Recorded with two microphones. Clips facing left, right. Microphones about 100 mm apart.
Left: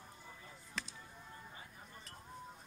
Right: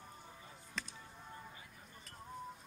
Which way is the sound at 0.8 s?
Centre (ahead or behind).